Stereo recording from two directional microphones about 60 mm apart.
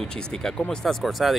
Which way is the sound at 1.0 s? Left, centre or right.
Centre.